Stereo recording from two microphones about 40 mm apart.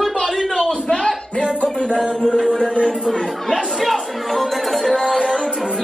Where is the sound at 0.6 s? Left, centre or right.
Centre.